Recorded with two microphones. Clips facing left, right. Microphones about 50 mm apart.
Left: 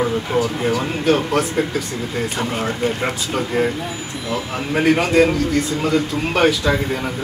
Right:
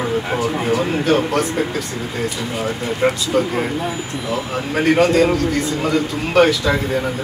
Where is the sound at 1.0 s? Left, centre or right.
Centre.